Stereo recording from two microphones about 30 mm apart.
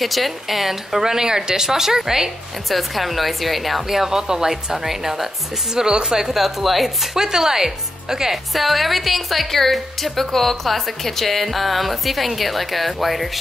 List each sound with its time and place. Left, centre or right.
0.0 s a woman's voice: centre
1.0 s a woman's voice: right
2.7 s a woman's voice: centre
3.8 s a woman's voice: centre
4.2 s speech: right
4.6 s a woman's voice: centre
6.2 s a woman's voice: centre
7.2 s a woman's voice: centre
8.5 s a woman's voice: centre